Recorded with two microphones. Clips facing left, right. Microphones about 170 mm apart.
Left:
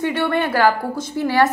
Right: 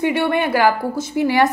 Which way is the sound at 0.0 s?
10° right (ahead or behind).